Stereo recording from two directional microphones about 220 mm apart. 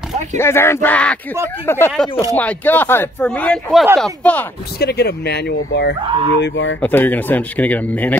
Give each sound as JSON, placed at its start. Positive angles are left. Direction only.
{"t": 0.4, "sound": "speech", "side_deg": 10}
{"t": 4.7, "sound": "speech", "side_deg": 50}
{"t": 6.8, "sound": "speech", "side_deg": 10}